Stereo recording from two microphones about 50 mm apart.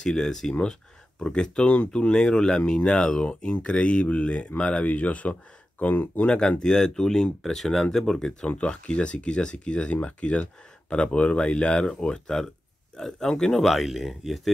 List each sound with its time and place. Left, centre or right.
0.0 s speech: centre; by 6.2 s left
6.2 s speech: left
8.5 s speech: left; by 14.5 s centre